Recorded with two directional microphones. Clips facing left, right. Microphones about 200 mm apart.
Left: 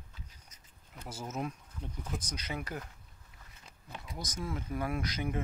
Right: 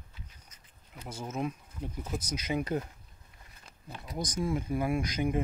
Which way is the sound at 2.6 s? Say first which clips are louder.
Right 9 dB; 25° right (ahead or behind).